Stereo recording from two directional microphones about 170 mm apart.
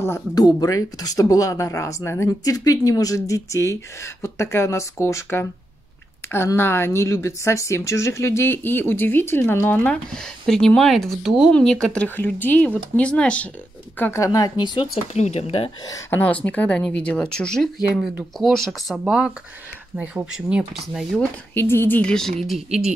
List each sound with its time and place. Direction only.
0.0 s a woman's voice: 20° left (ahead or behind)
15.1 s speech: 40° left (ahead or behind)
15.9 s a woman's voice: 10° left (ahead or behind)
21.5 s speech: 15° left (ahead or behind); by 22.9 s 5° right (ahead or behind)